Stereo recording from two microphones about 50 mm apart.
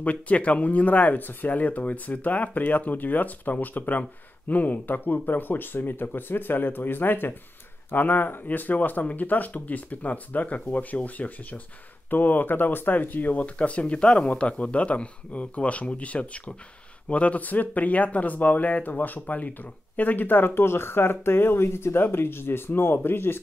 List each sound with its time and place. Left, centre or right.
0.0 s speech: left